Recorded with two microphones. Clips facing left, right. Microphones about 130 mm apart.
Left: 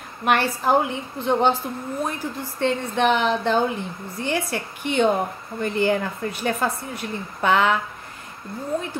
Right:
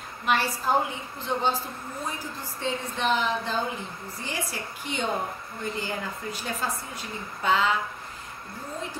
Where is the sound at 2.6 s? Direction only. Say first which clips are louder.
Left 8 dB; 65° left (ahead or behind).